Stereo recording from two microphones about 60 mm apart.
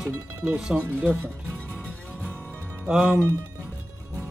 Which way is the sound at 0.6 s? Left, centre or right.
Centre.